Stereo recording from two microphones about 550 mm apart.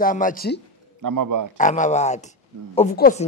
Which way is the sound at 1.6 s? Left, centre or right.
Centre.